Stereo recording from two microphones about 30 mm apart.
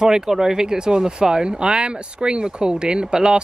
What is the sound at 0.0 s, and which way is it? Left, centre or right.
Speech, right.